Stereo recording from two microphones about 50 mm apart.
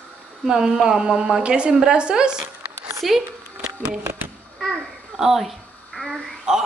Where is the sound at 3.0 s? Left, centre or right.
Centre.